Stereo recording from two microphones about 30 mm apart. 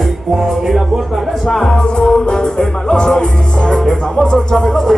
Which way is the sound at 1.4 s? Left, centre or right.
Centre.